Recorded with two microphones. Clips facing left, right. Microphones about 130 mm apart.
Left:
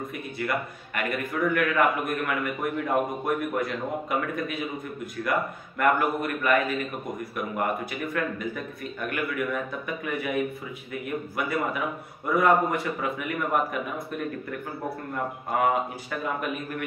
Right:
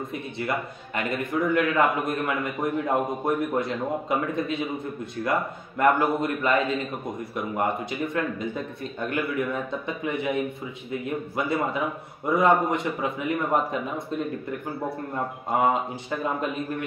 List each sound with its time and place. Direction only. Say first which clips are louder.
0.1 s a man's voice: even; 25° right (ahead or behind)
5.8 s a man's voice: right 2 dB; 25° right (ahead or behind)
15.5 s a man's voice: right 1 dB; 25° right (ahead or behind)